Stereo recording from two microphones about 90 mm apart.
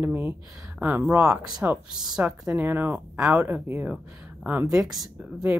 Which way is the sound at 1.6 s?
10° right (ahead or behind).